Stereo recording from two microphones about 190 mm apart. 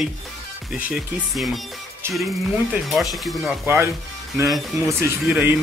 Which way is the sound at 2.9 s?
Centre (ahead or behind).